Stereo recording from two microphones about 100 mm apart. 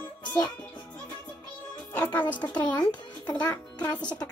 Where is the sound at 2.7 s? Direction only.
45° left (ahead or behind).